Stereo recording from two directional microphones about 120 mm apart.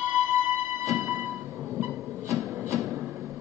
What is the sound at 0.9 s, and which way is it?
Music, 10° right (ahead or behind).